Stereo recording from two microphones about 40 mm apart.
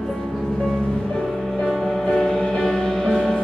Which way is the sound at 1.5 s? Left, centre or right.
Centre.